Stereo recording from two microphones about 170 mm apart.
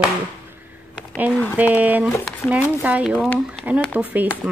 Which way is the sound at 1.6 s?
10° right (ahead or behind).